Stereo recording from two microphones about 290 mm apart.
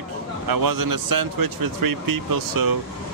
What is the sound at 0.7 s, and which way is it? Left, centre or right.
Speech, right.